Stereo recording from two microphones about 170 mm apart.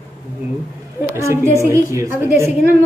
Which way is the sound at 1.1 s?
15° right (ahead or behind).